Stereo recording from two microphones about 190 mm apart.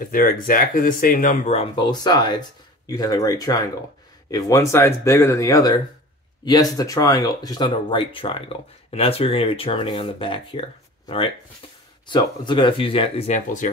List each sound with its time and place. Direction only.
0.0 s speech: 50° left (ahead or behind)